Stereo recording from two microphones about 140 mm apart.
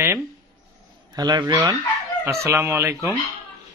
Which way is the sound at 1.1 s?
30° right (ahead or behind).